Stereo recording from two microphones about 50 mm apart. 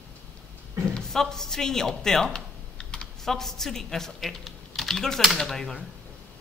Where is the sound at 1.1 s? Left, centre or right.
Centre.